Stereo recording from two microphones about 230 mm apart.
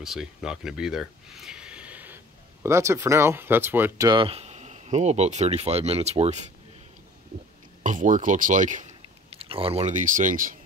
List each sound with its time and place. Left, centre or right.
0.0 s speech: centre; by 6.5 s right
7.8 s speech: right